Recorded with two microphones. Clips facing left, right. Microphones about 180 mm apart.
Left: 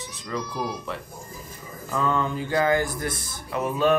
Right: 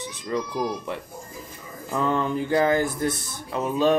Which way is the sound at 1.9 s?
25° right (ahead or behind).